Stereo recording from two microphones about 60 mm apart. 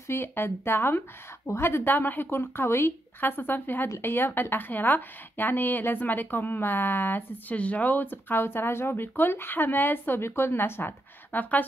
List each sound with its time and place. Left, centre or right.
0.1 s a woman's voice: left